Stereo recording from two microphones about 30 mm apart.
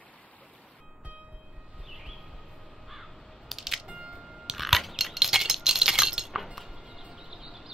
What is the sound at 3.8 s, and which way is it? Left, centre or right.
Music, right.